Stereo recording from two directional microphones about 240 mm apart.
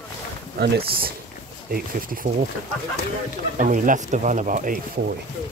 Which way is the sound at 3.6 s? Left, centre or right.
Right.